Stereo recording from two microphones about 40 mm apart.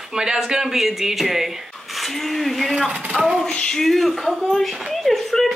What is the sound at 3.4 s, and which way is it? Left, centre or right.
Speech, left.